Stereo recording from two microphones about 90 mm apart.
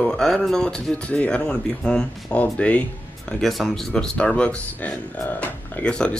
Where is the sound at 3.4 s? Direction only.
Centre (ahead or behind).